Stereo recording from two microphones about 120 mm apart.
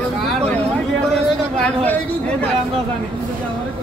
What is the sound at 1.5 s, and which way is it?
Speech, 10° left (ahead or behind).